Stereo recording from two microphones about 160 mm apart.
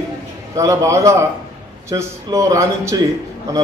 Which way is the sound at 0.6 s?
20° right (ahead or behind).